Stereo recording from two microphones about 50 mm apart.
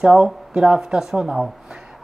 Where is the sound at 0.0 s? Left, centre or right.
Centre.